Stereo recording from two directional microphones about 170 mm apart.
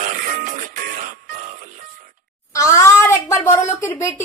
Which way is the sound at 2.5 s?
15° left (ahead or behind).